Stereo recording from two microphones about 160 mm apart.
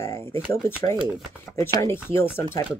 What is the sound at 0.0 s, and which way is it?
Speech, 15° left (ahead or behind).